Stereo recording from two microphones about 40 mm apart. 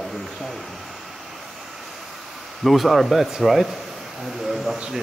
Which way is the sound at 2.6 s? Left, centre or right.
Centre.